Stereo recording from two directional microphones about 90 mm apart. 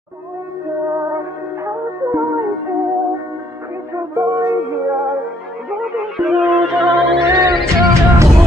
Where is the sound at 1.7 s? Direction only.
30° right (ahead or behind).